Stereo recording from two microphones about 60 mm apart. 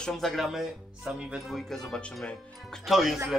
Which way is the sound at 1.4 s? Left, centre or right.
Centre.